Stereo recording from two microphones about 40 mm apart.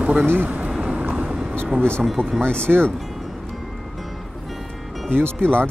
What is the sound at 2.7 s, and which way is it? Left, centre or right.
Speech, centre.